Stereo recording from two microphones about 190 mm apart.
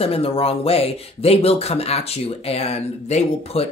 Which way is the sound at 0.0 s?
30° left (ahead or behind).